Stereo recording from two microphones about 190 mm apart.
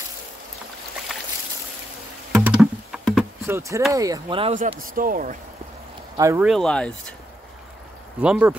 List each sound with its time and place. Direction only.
2.3 s a sound: 5° right (ahead or behind)
3.4 s speech: 15° right (ahead or behind)
4.7 s speech: 45° right (ahead or behind)
6.1 s speech: 15° right (ahead or behind)
6.4 s speech: centre (ahead or behind)
8.2 s speech: 5° right (ahead or behind)